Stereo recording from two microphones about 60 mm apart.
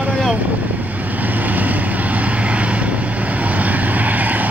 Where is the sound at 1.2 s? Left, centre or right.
Right.